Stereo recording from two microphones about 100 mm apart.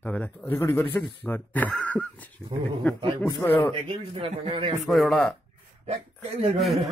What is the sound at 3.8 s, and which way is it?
Speech, 70° right (ahead or behind).